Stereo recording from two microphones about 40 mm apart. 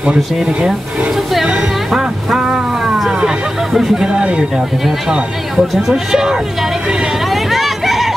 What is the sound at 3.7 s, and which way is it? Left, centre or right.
Speech, centre.